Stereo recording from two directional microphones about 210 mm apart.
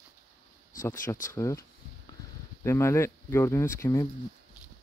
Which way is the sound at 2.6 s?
10° left (ahead or behind).